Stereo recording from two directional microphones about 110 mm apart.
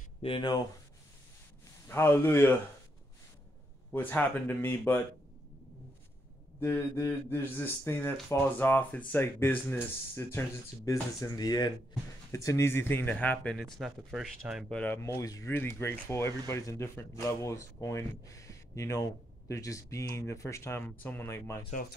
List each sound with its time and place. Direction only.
0.2 s speech: 65° left (ahead or behind)
1.9 s speech: 20° left (ahead or behind)
3.9 s speech: 15° left (ahead or behind)
6.6 s speech: 25° left (ahead or behind)
10.9 s speech: 30° left (ahead or behind)
12.3 s speech: 25° left (ahead or behind); by 14.8 s centre (ahead or behind)
15.0 s speech: 25° left (ahead or behind)